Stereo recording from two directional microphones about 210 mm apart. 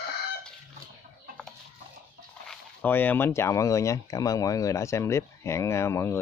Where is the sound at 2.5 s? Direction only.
10° left (ahead or behind).